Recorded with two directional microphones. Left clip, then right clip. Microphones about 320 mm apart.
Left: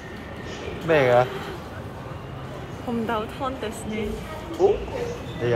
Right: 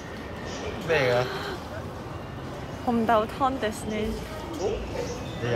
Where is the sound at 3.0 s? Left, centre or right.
Centre.